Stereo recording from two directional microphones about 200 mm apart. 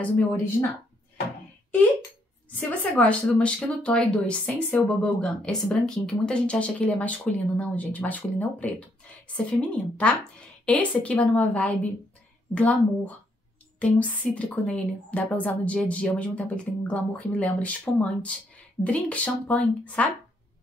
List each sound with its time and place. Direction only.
0.0 s a woman's voice: 10° left (ahead or behind)
2.8 s a woman's voice: 5° left (ahead or behind)